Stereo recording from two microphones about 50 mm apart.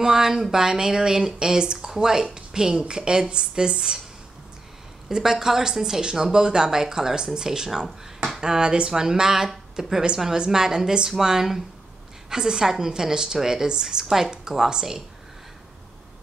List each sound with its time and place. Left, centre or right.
0.0 s speech: centre
5.0 s speech: centre